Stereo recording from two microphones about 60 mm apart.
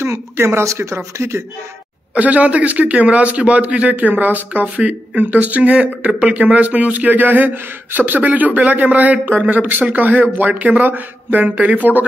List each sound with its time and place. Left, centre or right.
0.0 s speech: right
2.1 s a man's voice: right